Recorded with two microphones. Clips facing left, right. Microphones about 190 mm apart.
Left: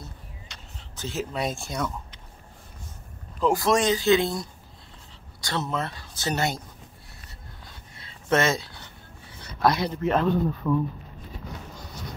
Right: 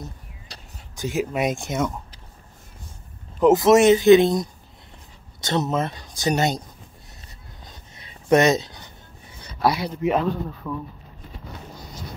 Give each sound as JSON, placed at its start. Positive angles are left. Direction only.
{"t": 0.7, "sound": "speech", "side_deg": -15}
{"t": 3.3, "sound": "speech", "side_deg": -20}
{"t": 7.6, "sound": "writing", "side_deg": -20}